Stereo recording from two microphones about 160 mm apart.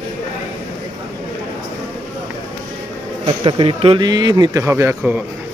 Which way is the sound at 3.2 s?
35° right (ahead or behind).